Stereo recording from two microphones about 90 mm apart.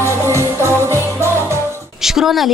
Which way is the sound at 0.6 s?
30° right (ahead or behind).